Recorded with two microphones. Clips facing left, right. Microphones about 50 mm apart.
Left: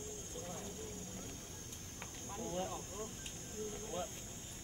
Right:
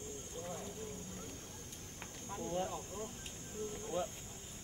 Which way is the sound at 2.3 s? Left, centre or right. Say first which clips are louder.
Right 3 dB; centre.